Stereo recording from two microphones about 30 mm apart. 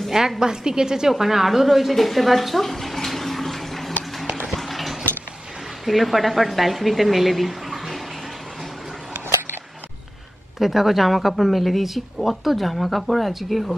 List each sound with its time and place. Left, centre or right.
0.4 s a woman's voice: right
1.1 s a sound: centre
5.9 s speech: centre
10.6 s speech: centre